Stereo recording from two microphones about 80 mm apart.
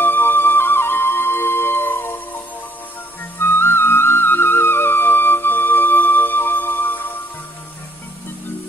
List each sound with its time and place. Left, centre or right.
0.0 s flute: left
3.3 s music: left